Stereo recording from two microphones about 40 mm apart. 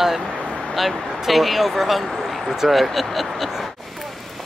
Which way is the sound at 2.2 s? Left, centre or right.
Centre.